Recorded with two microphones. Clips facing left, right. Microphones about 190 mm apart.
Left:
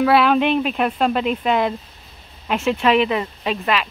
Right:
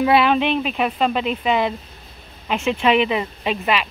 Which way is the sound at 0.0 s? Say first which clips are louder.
Left 1 dB; centre (ahead or behind).